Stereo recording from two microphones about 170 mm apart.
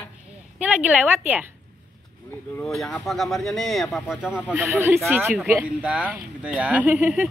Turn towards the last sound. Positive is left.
turn(degrees=-5)  # may be behind; listen again after turning